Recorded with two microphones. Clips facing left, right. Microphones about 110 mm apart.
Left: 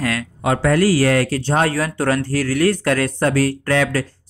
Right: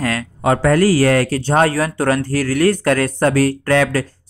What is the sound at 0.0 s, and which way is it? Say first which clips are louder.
Speech: right 2 dB; 40° right (ahead or behind).